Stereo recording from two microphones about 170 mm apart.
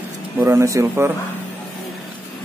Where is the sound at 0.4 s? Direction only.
15° right (ahead or behind).